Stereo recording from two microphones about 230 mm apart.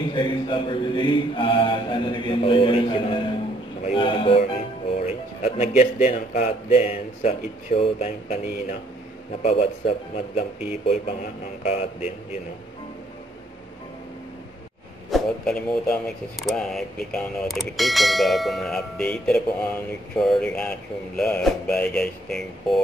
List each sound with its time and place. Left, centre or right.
0.1 s a man's voice: left
11.6 s a man's voice: left
15.0 s speech: centre